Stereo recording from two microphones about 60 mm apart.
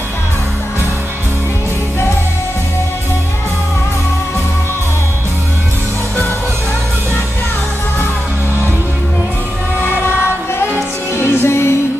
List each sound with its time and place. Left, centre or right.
9.8 s music: left